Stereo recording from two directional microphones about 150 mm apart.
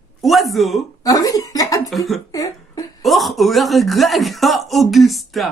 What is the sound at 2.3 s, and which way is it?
Speech, 25° left (ahead or behind).